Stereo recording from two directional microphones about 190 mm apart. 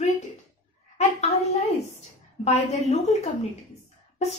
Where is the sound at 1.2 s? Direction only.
35° left (ahead or behind).